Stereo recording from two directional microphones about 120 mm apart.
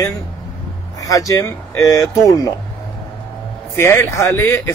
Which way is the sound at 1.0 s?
30° left (ahead or behind).